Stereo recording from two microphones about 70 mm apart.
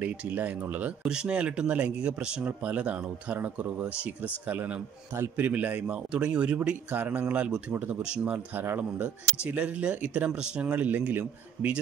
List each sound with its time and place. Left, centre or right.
0.0 s speech: right
1.0 s speech: centre
7.0 s speech: right
8.5 s speech: right